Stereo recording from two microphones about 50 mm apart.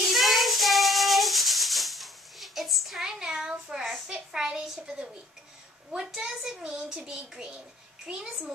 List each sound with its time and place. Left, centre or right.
0.0 s child singing: centre
3.1 s a sound: centre
5.9 s a woman's voice: centre